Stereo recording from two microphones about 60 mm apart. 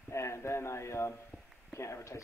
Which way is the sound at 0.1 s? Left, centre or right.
Left.